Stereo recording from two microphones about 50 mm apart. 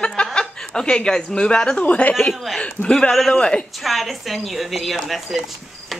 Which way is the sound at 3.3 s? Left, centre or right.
Centre.